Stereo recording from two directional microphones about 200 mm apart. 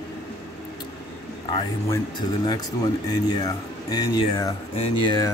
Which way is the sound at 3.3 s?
20° left (ahead or behind).